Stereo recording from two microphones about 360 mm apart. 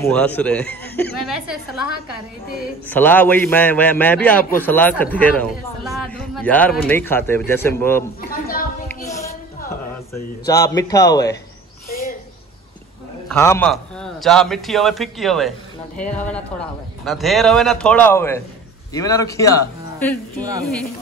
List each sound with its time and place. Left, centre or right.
0.0 s a man's voice: centre
2.9 s a man's voice: centre
8.2 s a sound: left
8.8 s music: centre
10.1 s speech: centre
11.9 s a sound: left
13.3 s a man's voice: centre
17.0 s a man's voice: centre
20.4 s speech: centre